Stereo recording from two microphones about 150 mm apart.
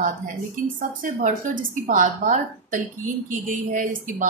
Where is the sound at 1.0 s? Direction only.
65° right (ahead or behind).